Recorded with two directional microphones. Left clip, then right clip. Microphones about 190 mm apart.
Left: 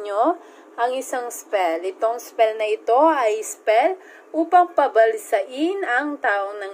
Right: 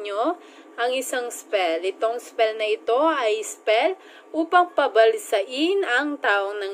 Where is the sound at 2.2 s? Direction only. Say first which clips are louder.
Left 3 dB; 10° right (ahead or behind).